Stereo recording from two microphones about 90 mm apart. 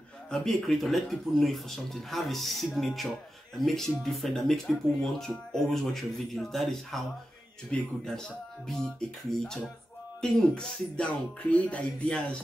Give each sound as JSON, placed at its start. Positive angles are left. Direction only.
{"t": 0.3, "sound": "speech", "side_deg": 5}
{"t": 10.2, "sound": "music", "side_deg": 10}